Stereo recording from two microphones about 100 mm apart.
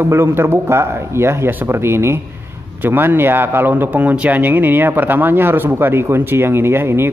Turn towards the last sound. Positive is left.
turn(degrees=-25)  # may be behind; listen again after turning